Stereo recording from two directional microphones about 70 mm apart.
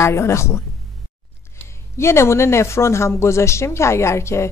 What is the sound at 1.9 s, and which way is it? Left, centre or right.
Speech, left.